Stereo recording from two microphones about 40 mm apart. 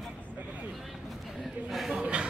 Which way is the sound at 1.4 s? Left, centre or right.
Centre.